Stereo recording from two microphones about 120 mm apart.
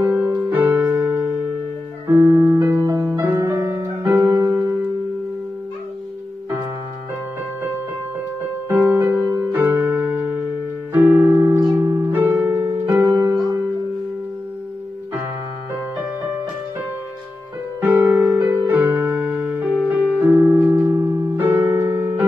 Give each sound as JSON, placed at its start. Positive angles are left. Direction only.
{"t": 0.0, "sound": "music", "side_deg": -15}
{"t": 2.6, "sound": "piano", "side_deg": -30}
{"t": 4.5, "sound": "music", "side_deg": -20}
{"t": 8.6, "sound": "music", "side_deg": -20}
{"t": 11.0, "sound": "keyboard", "side_deg": -15}
{"t": 11.7, "sound": "music", "side_deg": -20}
{"t": 17.7, "sound": "music", "side_deg": -15}